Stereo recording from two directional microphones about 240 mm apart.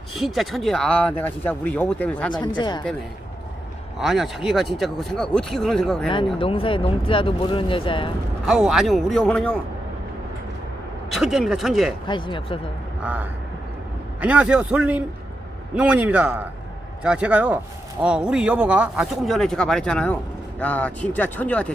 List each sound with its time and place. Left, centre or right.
0.1 s speech: centre
2.3 s speech: centre
4.0 s speech: centre
6.0 s speech: left
8.5 s speech: centre
11.1 s speech: centre
12.1 s speech: centre
13.0 s speech: centre